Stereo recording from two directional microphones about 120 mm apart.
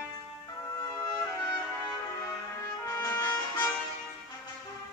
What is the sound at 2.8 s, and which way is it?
Music, 20° left (ahead or behind).